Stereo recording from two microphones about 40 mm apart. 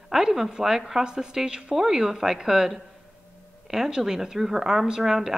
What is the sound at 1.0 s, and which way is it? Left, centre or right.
Speech, centre.